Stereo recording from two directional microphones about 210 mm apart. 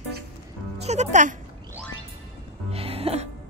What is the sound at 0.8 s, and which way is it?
Speech, 30° right (ahead or behind).